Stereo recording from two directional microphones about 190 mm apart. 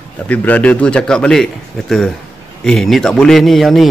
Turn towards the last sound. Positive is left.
turn(degrees=0)  # may be behind; listen again after turning